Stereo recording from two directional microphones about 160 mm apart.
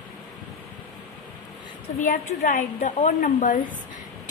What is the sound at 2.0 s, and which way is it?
A woman's voice, 55° left (ahead or behind).